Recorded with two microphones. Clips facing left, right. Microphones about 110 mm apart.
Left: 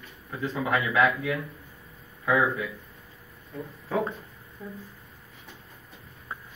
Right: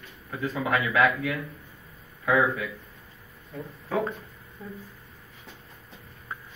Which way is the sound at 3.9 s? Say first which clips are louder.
Even; centre (ahead or behind).